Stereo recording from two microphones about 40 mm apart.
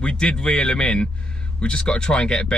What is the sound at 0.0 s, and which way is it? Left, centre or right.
Speech, left.